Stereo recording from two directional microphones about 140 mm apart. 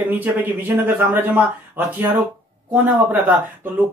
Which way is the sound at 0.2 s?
15° right (ahead or behind).